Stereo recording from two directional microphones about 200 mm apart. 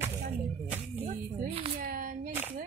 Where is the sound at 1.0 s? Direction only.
30° right (ahead or behind).